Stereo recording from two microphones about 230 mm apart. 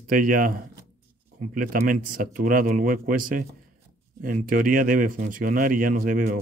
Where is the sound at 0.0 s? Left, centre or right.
Right.